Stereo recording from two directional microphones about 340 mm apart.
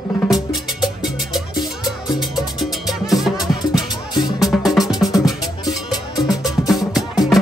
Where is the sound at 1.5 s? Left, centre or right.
Centre.